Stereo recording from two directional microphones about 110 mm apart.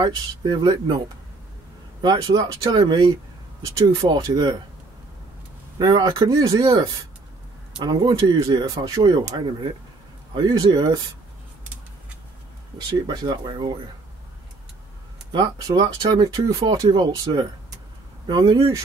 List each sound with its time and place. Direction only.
0.0 s speech: 40° right (ahead or behind)
5.8 s speech: 35° right (ahead or behind)
7.8 s speech: 40° right (ahead or behind)
13.1 s speech: 35° right (ahead or behind)
15.3 s speech: 40° right (ahead or behind)